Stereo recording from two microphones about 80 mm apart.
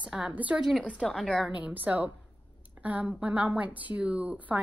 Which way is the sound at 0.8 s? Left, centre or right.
Centre.